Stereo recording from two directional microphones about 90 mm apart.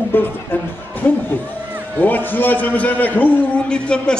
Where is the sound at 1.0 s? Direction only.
20° left (ahead or behind).